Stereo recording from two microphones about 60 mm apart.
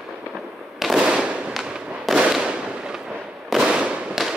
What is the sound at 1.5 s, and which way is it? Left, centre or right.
Fireworks, centre.